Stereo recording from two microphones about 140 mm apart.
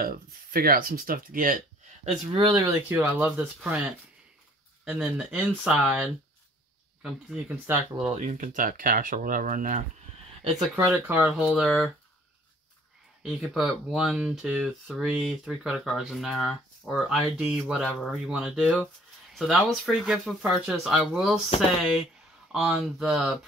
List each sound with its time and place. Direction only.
0.0 s speech: 90° right
2.3 s speech: 25° right (ahead or behind)
3.0 s speech: 10° right (ahead or behind)
4.8 s speech: 10° right (ahead or behind)
8.2 s speech: 65° right (ahead or behind)
10.5 s speech: centre (ahead or behind)
11.0 s speech: 15° right (ahead or behind)
13.2 s speech: centre (ahead or behind)
22.5 s speech: 5° right (ahead or behind)